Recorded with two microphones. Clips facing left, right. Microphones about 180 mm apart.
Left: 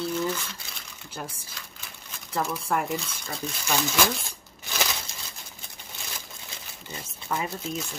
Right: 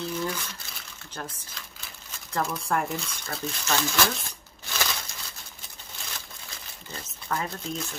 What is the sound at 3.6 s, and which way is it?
Speech, 10° left (ahead or behind).